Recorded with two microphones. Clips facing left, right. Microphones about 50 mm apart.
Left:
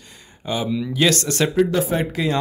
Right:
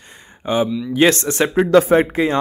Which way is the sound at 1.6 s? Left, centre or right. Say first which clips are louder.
Right 9 dB; right.